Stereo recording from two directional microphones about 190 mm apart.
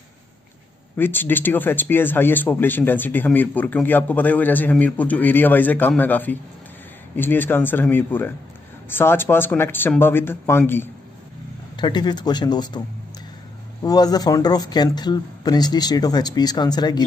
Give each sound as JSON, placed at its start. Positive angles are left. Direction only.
{"t": 0.9, "sound": "speech", "side_deg": 10}
{"t": 11.7, "sound": "speech", "side_deg": 25}
{"t": 13.8, "sound": "speech", "side_deg": 20}